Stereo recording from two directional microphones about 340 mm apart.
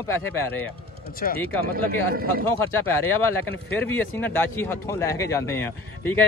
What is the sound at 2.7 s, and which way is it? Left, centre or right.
Speech, centre.